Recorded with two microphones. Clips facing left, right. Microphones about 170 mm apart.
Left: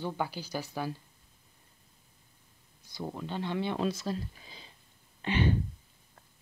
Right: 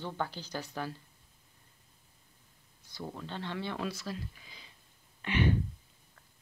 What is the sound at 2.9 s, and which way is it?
Speech, 15° left (ahead or behind).